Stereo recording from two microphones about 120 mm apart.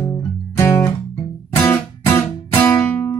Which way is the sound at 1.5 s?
20° left (ahead or behind).